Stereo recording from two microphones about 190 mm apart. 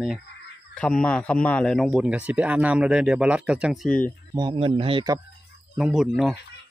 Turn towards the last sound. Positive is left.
turn(degrees=-5)  # may be behind; listen again after turning